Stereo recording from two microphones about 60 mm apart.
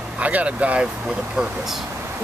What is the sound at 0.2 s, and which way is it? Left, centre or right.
Speech, right.